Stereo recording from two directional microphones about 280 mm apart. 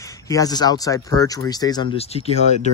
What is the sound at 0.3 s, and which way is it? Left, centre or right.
Speech, centre.